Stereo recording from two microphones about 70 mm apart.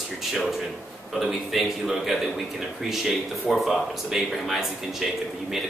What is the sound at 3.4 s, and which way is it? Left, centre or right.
Speech, centre.